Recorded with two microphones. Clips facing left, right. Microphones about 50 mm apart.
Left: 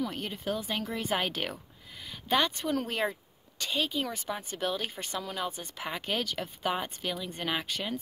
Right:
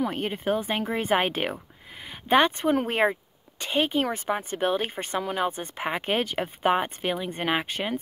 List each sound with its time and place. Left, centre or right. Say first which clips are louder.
0.0 s speech: right 7 dB; right